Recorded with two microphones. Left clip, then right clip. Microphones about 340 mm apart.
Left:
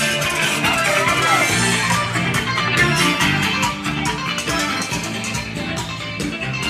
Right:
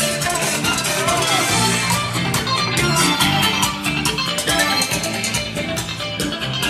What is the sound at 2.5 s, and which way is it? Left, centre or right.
Music, right.